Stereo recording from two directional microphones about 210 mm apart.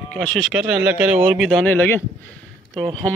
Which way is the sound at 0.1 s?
5° left (ahead or behind).